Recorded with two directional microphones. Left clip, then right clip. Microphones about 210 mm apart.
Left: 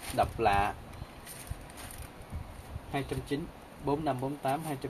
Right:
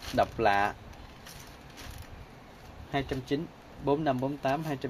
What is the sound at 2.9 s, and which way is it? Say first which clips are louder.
Speech: right 3 dB; 45° right (ahead or behind).